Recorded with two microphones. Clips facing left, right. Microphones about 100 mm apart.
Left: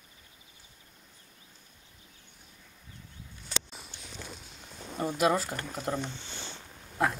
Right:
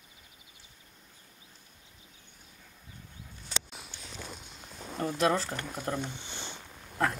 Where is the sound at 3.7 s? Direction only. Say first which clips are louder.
Right 1 dB; centre (ahead or behind).